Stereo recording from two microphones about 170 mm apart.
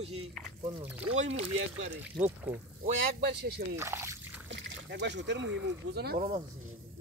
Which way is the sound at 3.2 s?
70° right (ahead or behind).